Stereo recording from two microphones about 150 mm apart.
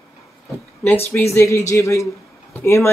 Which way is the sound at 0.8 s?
15° left (ahead or behind).